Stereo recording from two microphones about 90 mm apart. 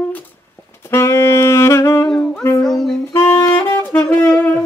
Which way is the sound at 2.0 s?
5° left (ahead or behind).